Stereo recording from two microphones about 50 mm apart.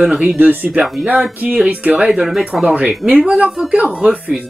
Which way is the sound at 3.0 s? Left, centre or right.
Centre.